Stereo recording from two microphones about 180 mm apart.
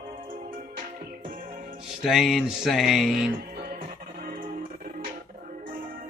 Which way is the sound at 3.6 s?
55° right (ahead or behind).